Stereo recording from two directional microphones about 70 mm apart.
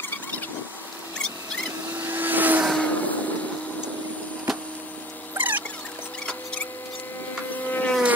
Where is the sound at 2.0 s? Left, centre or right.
Right.